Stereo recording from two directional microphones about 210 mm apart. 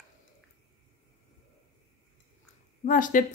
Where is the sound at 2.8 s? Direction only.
40° left (ahead or behind).